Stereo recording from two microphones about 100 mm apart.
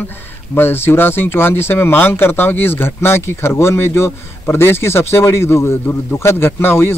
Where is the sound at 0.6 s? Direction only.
20° left (ahead or behind).